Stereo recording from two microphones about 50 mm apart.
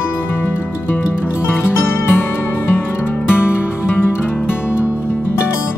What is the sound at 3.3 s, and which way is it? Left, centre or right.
Music, left.